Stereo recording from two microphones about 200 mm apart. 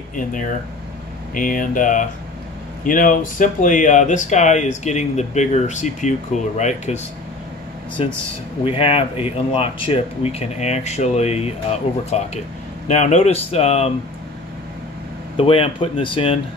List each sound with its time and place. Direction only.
0.1 s speech: 40° left (ahead or behind)
8.0 s speech: 30° left (ahead or behind)
15.3 s speech: 30° left (ahead or behind)